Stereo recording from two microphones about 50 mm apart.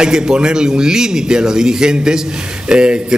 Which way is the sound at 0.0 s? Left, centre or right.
Centre.